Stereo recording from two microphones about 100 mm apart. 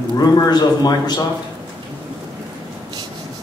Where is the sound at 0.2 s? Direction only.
45° left (ahead or behind).